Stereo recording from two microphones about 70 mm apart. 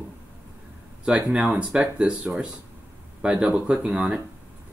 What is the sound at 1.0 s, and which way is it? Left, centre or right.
Speech, centre.